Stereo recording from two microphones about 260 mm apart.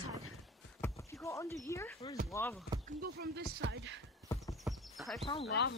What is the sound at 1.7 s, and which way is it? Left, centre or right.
Speech, centre.